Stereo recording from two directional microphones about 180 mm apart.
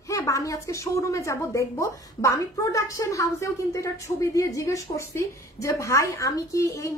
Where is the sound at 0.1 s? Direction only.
20° left (ahead or behind).